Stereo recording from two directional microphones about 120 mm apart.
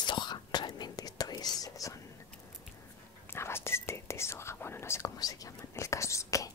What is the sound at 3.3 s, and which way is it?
Whispering, 20° left (ahead or behind).